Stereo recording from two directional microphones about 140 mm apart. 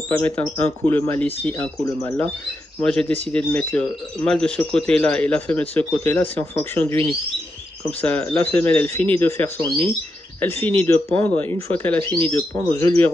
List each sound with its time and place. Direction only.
0.1 s speech: 15° left (ahead or behind)